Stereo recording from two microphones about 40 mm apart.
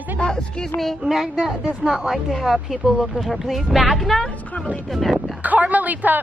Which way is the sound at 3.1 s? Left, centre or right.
Centre.